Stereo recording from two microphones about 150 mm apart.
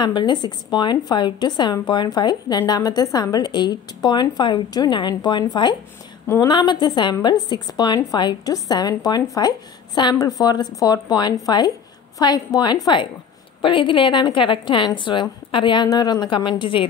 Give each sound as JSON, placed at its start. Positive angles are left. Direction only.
{"t": 0.0, "sound": "a woman's voice", "side_deg": 30}
{"t": 6.2, "sound": "a woman's voice", "side_deg": 15}
{"t": 6.5, "sound": "a woman's voice", "side_deg": 30}